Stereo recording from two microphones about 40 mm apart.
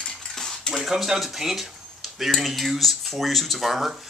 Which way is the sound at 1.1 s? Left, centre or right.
Centre.